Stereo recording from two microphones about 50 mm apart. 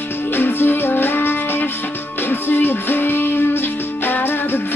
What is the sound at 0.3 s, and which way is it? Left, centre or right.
Music, left.